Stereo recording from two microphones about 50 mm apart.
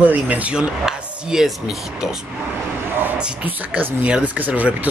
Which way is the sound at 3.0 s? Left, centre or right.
Right.